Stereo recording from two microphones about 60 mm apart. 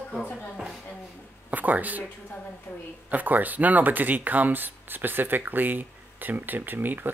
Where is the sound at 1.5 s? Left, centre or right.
Right.